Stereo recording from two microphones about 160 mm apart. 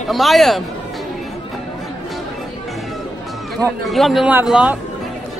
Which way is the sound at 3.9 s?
Centre (ahead or behind).